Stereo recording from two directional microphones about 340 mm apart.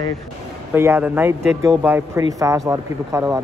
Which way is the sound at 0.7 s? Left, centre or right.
Centre.